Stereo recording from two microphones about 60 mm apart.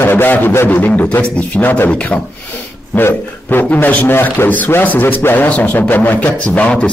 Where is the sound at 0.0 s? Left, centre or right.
Left.